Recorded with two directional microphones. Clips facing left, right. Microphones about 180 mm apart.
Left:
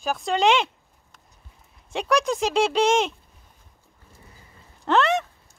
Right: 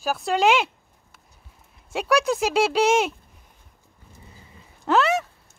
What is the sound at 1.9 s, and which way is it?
Speech, 5° right (ahead or behind).